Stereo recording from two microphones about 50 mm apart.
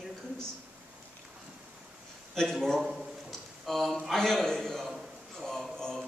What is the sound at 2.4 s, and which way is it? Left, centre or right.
Speech, centre.